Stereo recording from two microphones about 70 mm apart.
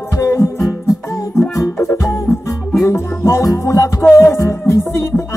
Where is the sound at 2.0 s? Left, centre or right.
Left.